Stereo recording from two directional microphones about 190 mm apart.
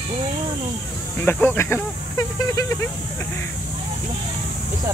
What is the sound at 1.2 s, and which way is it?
Speech, 10° left (ahead or behind).